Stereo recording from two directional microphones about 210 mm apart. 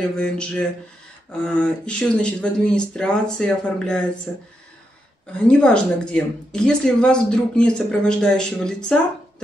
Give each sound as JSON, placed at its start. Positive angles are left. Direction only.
{"t": 0.2, "sound": "speech", "side_deg": 5}
{"t": 5.5, "sound": "speech", "side_deg": 5}